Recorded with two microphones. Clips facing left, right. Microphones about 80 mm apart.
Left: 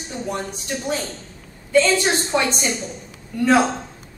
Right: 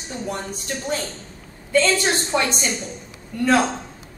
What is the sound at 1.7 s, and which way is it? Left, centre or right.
Speech, centre.